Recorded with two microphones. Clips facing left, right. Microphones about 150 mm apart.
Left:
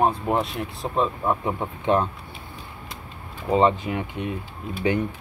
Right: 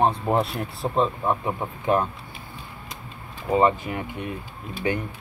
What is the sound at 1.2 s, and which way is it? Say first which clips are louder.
Speech: left 1 dB; 15° right (ahead or behind).